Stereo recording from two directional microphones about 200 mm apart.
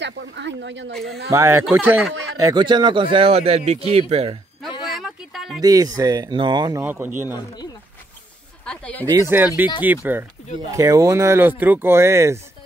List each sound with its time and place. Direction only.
0.0 s speech: 60° right (ahead or behind)
1.3 s speech: 15° right (ahead or behind); by 4.4 s 30° right (ahead or behind)
4.8 s a sound: centre (ahead or behind)
5.6 s speech: 20° right (ahead or behind)
6.8 s speech: 10° right (ahead or behind)
8.6 s speech: 5° left (ahead or behind)
9.0 s speech: 15° right (ahead or behind)